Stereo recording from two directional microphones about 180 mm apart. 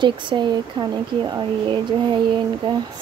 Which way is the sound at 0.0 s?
25° right (ahead or behind).